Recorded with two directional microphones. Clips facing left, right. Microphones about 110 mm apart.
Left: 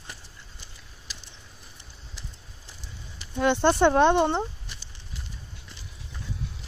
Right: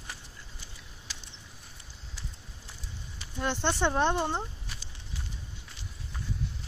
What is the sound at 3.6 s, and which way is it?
Speech, 50° left (ahead or behind).